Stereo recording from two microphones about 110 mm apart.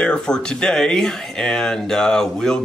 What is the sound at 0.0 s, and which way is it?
Speech, 10° left (ahead or behind).